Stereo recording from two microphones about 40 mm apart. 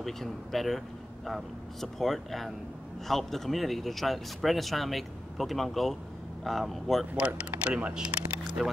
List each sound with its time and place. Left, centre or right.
0.0 s speech: centre
7.2 s speech: right
8.6 s speech: centre